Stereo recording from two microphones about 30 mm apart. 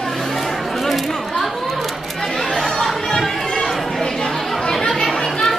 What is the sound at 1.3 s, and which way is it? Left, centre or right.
Chatter, centre.